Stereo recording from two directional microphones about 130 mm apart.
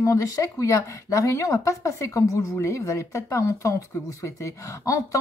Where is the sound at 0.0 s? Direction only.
25° left (ahead or behind).